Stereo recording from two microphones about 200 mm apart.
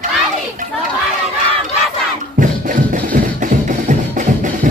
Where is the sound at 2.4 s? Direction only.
40° right (ahead or behind).